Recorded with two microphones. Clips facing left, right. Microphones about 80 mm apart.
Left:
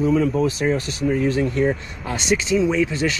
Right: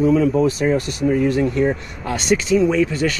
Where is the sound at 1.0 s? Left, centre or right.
Right.